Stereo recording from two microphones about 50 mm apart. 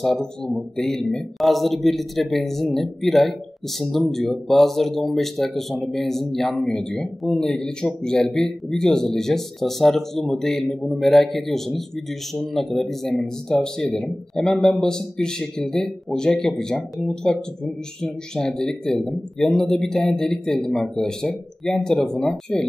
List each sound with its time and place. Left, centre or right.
0.0 s speech: centre